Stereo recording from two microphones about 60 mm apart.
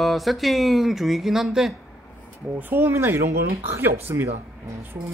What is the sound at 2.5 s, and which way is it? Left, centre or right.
Speech, right.